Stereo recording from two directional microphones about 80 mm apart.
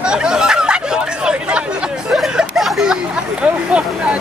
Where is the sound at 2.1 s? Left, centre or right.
Centre.